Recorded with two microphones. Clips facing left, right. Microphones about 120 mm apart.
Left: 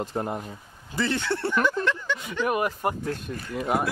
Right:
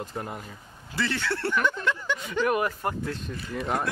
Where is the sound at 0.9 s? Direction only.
20° left (ahead or behind).